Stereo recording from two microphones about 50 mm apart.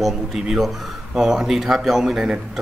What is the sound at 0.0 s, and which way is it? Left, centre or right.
Speech, centre.